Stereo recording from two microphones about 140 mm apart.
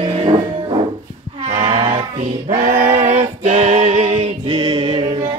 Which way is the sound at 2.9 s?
65° right (ahead or behind).